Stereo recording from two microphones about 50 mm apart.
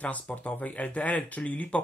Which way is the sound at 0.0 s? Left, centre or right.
Left.